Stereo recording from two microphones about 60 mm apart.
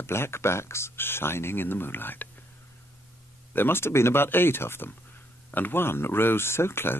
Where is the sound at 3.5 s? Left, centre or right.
Left.